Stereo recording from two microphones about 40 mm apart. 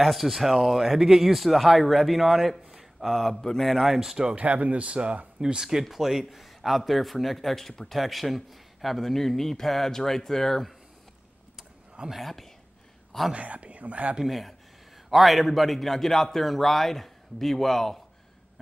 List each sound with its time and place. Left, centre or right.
0.0 s a man's voice: centre
4.4 s speech: right
5.4 s a man's voice: centre
11.5 s vehicle: centre
12.2 s a man's voice: centre
13.3 s speech: right
14.2 s a man's voice: centre